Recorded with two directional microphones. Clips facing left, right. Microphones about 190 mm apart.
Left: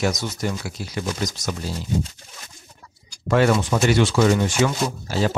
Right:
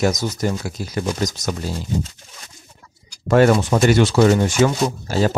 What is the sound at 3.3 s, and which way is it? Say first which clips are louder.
Speech: right 4 dB; 45° right (ahead or behind).